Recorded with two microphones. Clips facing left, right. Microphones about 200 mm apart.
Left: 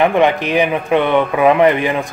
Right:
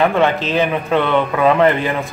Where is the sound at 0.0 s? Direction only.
15° left (ahead or behind).